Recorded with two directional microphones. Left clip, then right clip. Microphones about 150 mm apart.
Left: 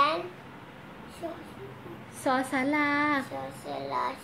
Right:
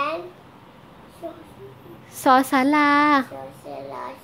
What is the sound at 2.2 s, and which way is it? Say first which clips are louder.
A woman's voice: right 11 dB; 60° right (ahead or behind).